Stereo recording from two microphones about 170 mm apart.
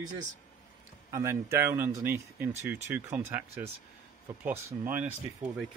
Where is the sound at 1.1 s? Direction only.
15° right (ahead or behind).